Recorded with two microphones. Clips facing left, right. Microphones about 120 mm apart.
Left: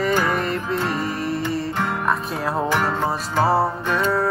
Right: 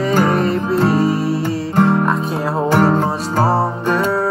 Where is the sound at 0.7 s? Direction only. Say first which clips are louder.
Right 12 dB; 35° right (ahead or behind).